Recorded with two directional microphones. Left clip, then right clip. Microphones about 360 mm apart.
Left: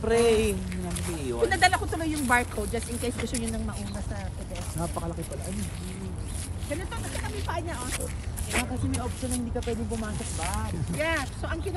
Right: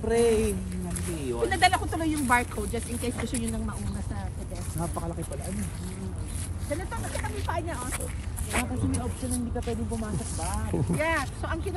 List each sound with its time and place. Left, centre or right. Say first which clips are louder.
0.1 s speech: left 1 dB; centre
4.7 s speech: even; centre
6.7 s speech: right 1 dB; centre